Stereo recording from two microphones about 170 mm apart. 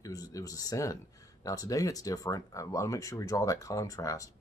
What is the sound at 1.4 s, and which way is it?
Speech, 20° left (ahead or behind).